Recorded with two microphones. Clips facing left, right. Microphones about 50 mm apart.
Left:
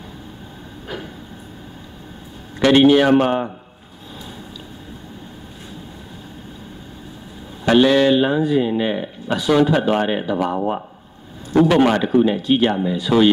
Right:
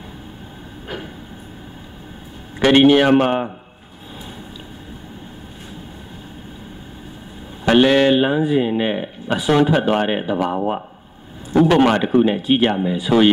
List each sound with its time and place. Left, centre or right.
2.6 s speech: right
7.6 s speech: right
11.7 s speech: centre